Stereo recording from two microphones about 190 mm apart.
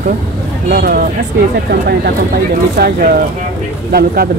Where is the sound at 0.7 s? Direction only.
55° right (ahead or behind).